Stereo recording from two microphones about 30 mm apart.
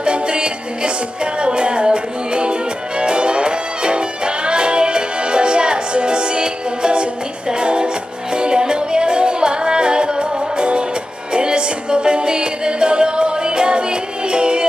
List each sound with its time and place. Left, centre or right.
0.0 s music: right